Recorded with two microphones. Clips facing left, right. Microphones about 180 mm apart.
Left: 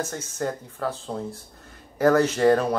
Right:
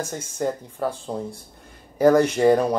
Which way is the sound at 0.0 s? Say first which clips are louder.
Right 2 dB; 10° right (ahead or behind).